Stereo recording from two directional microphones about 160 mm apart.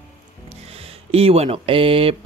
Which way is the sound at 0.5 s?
40° right (ahead or behind).